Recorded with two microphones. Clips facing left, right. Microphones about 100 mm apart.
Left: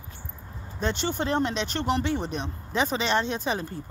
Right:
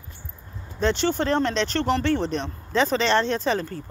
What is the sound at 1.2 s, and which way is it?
Speech, 15° left (ahead or behind).